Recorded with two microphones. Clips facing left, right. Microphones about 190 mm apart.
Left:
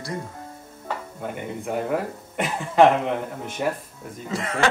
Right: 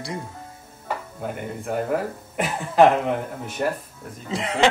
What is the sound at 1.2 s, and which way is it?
Speech, centre (ahead or behind).